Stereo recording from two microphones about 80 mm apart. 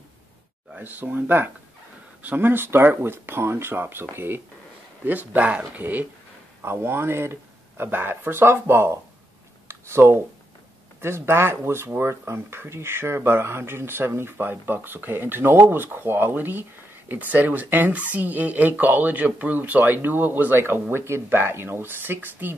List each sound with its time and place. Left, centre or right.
0.7 s speech: right
9.7 s a sound: right
11.0 s speech: right